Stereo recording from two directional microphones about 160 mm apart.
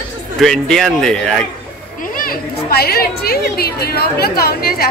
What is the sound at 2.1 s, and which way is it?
Speech, 70° left (ahead or behind).